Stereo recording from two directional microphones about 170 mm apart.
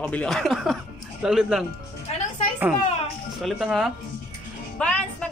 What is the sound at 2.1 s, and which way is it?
Music, 40° left (ahead or behind).